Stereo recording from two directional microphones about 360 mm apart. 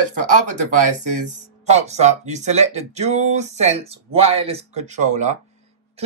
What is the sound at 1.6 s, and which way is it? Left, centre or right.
Speech, centre.